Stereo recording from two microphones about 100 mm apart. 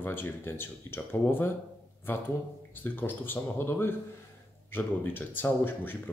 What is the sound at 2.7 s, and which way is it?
Speech, 20° left (ahead or behind).